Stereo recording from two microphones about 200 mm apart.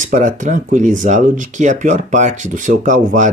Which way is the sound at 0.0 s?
40° right (ahead or behind).